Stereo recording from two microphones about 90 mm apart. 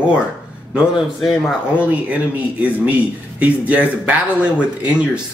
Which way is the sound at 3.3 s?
15° right (ahead or behind).